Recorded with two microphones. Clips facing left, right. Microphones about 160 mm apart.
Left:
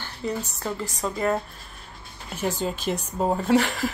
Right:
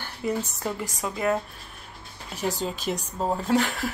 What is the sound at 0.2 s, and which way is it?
Speech, 10° right (ahead or behind).